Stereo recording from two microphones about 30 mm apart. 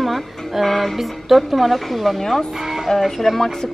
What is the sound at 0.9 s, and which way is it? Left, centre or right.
A woman's voice, centre.